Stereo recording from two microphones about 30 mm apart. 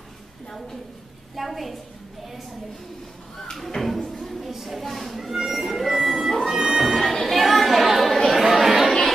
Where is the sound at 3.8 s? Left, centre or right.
Centre.